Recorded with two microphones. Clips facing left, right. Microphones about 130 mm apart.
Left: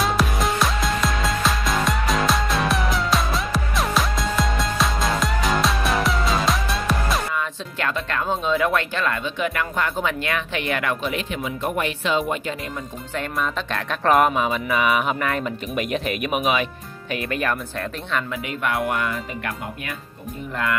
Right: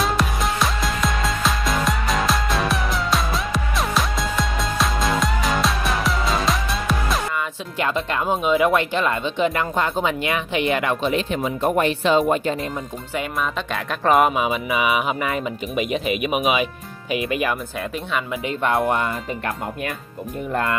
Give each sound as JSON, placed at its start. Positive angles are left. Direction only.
{"t": 0.0, "sound": "music", "side_deg": 0}
{"t": 7.8, "sound": "speech", "side_deg": -20}
{"t": 13.1, "sound": "music", "side_deg": -5}
{"t": 17.1, "sound": "speech", "side_deg": -10}
{"t": 18.3, "sound": "speech", "side_deg": -30}